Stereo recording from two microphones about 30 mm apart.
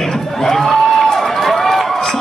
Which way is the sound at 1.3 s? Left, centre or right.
Centre.